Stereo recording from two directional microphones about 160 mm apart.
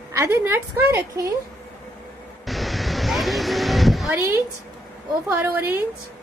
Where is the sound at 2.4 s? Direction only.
Centre (ahead or behind).